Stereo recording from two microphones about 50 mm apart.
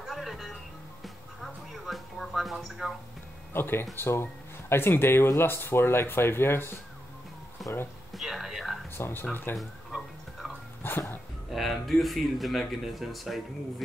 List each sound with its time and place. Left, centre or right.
0.0 s music: centre
3.5 s speech: left
7.6 s music: centre
8.1 s a sound: centre
8.9 s speech: left
9.3 s speech: left
9.6 s a sound: centre
10.8 s speech: left
11.5 s speech: centre